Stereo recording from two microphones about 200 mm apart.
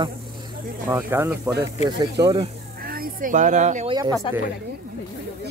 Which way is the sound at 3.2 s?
40° right (ahead or behind).